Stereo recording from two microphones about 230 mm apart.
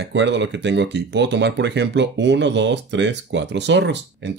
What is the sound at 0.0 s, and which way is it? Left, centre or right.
Speech, right.